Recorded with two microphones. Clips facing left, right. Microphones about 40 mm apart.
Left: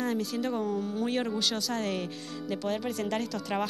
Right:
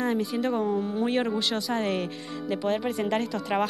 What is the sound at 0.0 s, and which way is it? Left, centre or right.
A woman's voice, centre.